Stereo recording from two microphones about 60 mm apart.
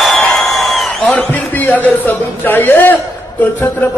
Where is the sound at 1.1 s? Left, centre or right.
Left.